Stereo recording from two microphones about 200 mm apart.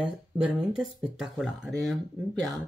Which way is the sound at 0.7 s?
5° right (ahead or behind).